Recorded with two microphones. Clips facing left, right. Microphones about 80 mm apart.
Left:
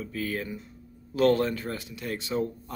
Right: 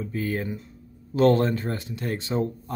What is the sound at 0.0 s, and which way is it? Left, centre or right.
Speech, right.